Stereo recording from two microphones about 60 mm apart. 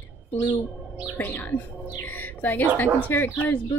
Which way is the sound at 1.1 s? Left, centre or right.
Left.